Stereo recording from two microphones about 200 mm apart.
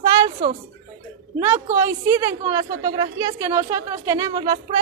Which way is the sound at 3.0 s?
25° right (ahead or behind).